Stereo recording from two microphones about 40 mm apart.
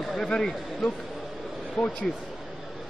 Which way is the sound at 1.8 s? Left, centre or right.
Centre.